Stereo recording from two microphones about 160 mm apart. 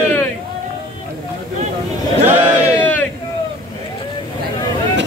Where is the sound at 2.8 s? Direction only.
10° left (ahead or behind).